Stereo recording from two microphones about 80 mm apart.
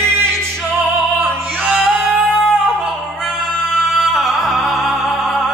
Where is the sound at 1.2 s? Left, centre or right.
Centre.